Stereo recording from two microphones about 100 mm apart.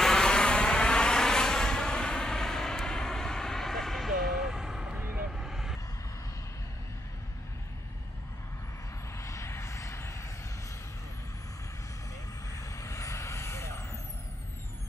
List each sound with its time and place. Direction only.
0.0 s vehicle: 5° left (ahead or behind)
9.1 s vehicle: 30° left (ahead or behind)
12.5 s vehicle: 30° left (ahead or behind)